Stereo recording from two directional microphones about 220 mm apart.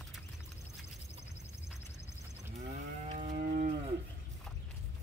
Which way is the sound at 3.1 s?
35° right (ahead or behind).